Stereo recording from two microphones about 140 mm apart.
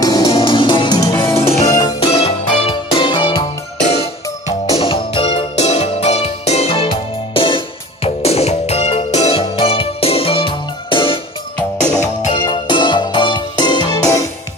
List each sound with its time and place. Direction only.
0.0 s music: 25° left (ahead or behind)
0.4 s music: 35° left (ahead or behind)
2.0 s music: 40° left (ahead or behind)
3.8 s music: 50° left (ahead or behind)
4.7 s music: 40° left (ahead or behind)
5.6 s music: 50° left (ahead or behind)
12.4 s music: 35° left (ahead or behind)